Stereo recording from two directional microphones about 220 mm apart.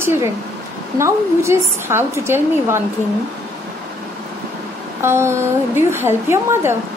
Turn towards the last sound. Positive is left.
turn(degrees=-10)  # may be behind; listen again after turning